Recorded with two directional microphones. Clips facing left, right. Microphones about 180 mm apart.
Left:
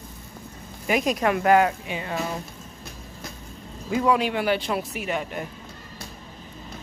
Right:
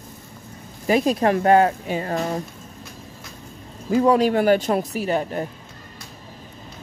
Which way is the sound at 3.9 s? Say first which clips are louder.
Right 5 dB; 40° right (ahead or behind).